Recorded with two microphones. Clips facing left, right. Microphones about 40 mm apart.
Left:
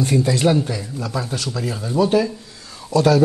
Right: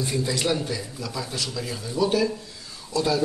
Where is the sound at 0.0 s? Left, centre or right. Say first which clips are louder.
Left 8 dB; left.